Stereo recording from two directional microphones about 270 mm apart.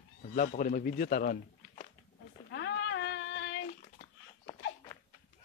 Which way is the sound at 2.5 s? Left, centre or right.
Left.